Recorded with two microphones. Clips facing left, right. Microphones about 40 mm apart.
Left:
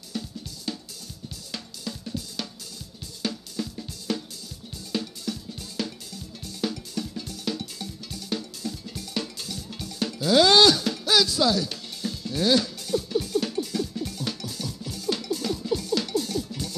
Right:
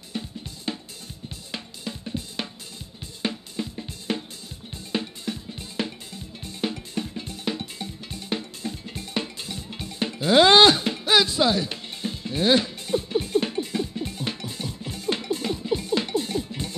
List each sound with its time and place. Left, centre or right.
0.1 s drum: right
0.7 s music: right
1.5 s drum: right
4.9 s music: right